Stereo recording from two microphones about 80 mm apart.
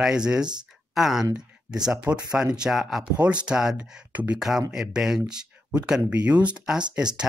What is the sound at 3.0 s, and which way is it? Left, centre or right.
Speech, centre.